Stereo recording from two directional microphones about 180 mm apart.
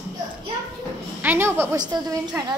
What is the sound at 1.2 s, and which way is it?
A woman's voice, 10° right (ahead or behind).